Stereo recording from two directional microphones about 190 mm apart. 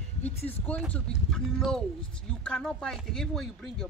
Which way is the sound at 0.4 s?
30° left (ahead or behind).